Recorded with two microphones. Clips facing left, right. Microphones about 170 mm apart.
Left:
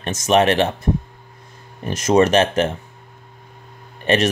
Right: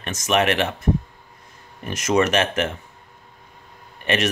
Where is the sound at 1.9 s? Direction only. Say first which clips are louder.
Left 5 dB; 30° left (ahead or behind).